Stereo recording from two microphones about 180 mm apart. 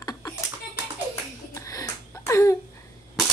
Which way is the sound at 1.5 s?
20° left (ahead or behind).